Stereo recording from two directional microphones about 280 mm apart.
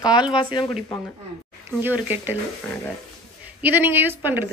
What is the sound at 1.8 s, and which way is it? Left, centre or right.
Speech, centre.